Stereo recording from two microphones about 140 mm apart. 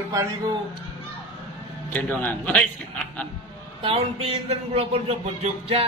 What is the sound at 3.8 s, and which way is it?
Music, 45° right (ahead or behind).